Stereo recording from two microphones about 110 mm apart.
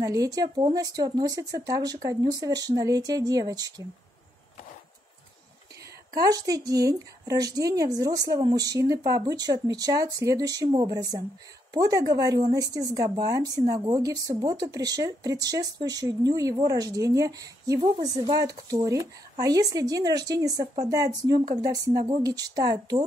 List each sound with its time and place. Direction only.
0.0 s speech: 35° right (ahead or behind)
6.1 s speech: 30° right (ahead or behind)
17.7 s a woman's voice: 65° right (ahead or behind)
18.0 s speech: 35° right (ahead or behind)